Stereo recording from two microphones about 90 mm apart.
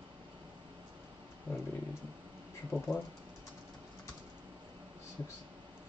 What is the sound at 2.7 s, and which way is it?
Speech, 20° left (ahead or behind).